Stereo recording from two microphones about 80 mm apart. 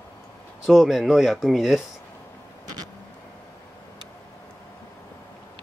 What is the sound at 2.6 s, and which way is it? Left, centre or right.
Vehicle, right.